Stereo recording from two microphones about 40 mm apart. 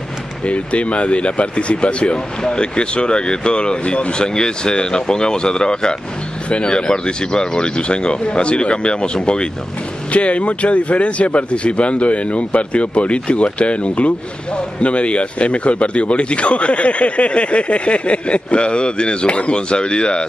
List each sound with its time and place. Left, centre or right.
0.5 s a man's voice: left
10.1 s a man's voice: left